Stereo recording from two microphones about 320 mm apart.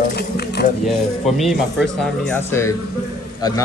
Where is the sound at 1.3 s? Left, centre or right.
Centre.